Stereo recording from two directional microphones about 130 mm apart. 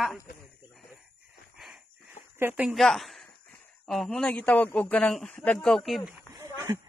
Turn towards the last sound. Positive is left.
turn(degrees=-20)  # may be behind; listen again after turning